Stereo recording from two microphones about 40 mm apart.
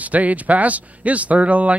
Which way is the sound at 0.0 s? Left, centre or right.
Right.